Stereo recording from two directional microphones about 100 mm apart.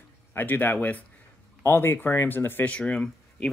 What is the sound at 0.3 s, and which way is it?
Speech, 20° left (ahead or behind).